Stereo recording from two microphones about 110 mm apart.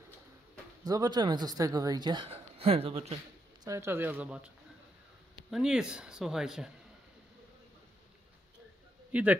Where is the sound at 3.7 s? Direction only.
25° right (ahead or behind).